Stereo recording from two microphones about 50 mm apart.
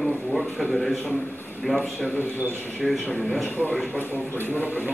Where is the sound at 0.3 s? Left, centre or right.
Centre.